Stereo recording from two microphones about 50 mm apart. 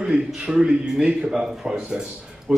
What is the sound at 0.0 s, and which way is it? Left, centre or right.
A man's voice, centre.